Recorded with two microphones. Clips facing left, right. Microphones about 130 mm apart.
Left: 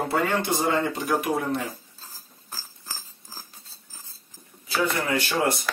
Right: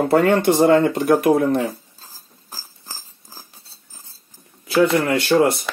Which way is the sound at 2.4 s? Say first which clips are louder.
Right 1 dB; 15° right (ahead or behind).